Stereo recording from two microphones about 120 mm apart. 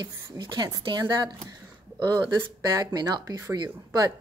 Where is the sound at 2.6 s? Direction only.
35° right (ahead or behind).